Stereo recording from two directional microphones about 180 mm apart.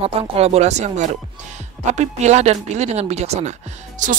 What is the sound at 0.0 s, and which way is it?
Speech, 35° right (ahead or behind).